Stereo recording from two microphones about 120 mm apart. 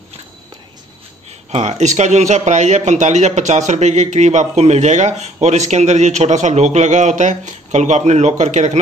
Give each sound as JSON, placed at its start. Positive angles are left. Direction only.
{"t": 1.5, "sound": "speech", "side_deg": -70}